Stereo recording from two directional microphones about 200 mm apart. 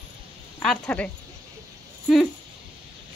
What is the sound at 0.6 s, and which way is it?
Speech, 5° left (ahead or behind).